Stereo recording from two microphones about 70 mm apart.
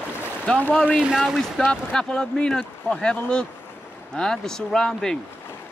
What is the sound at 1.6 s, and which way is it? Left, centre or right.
Speech, centre.